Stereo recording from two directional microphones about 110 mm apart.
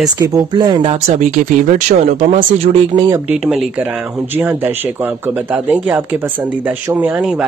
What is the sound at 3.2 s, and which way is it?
Speech, 5° right (ahead or behind).